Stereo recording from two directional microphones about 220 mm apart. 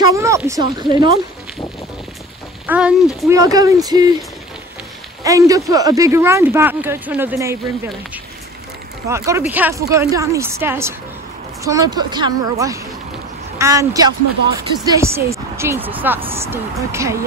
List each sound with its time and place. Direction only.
0.0 s a sound: 15° right (ahead or behind)
0.7 s speech: 20° right (ahead or behind)
2.6 s speech: 5° right (ahead or behind)
5.2 s speech: 15° right (ahead or behind)
9.1 s speech: 15° right (ahead or behind)